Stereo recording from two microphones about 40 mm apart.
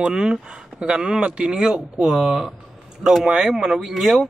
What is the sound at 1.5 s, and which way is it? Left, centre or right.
Speech, centre.